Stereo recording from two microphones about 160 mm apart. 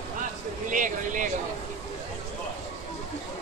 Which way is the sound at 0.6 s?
55° right (ahead or behind).